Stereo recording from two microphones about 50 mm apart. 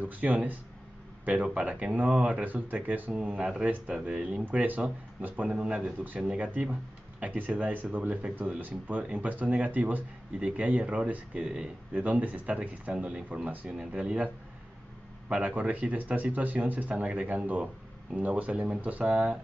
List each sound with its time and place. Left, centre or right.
0.0 s speech: right
3.1 s speech: right
5.5 s speech: right